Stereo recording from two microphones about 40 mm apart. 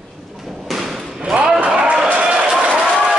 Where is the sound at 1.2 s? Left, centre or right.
Right.